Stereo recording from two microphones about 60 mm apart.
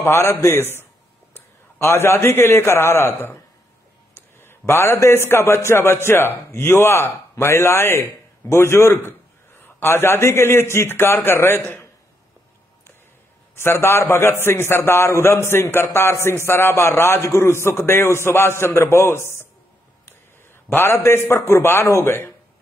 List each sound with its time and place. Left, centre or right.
0.0 s a man's voice: left
1.8 s a man's voice: left
4.1 s a sound: left
5.3 s a man's voice: left
13.6 s a man's voice: left
20.7 s a man's voice: left